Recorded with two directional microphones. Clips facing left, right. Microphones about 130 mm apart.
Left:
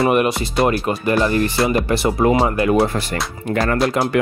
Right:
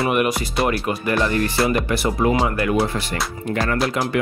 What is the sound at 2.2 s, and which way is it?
Speech, 40° left (ahead or behind).